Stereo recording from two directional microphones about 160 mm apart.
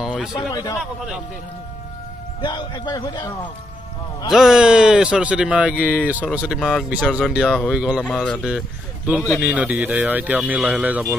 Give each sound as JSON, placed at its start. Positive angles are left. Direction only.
{"t": 0.0, "sound": "a sound", "side_deg": -5}
{"t": 0.3, "sound": "a man's voice", "side_deg": 25}
{"t": 0.7, "sound": "speech", "side_deg": -5}
{"t": 2.4, "sound": "a man's voice", "side_deg": 30}
{"t": 4.3, "sound": "speech", "side_deg": -5}
{"t": 6.6, "sound": "speech", "side_deg": 5}